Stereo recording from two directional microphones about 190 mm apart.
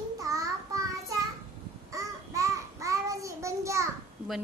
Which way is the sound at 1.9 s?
15° right (ahead or behind).